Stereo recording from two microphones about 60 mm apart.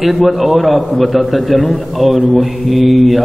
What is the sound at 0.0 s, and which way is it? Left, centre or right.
A man's voice, centre.